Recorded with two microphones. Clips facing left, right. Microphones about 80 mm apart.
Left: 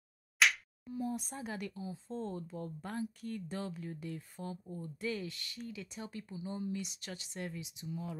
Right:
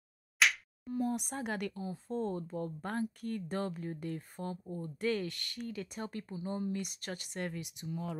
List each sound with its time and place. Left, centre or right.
0.4 s slap: centre
0.8 s speech: right